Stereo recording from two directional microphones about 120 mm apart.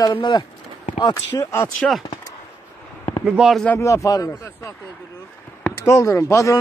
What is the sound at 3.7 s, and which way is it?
Speech, 25° left (ahead or behind).